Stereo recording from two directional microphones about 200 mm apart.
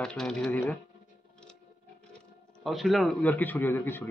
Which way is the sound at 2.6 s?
Centre (ahead or behind).